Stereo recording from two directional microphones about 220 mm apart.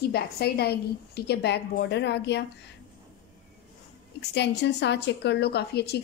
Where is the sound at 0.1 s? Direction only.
45° left (ahead or behind).